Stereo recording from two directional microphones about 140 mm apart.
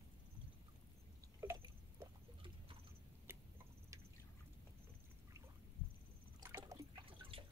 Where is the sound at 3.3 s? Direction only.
15° right (ahead or behind).